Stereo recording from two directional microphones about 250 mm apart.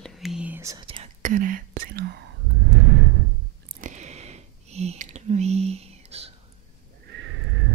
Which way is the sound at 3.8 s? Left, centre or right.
Right.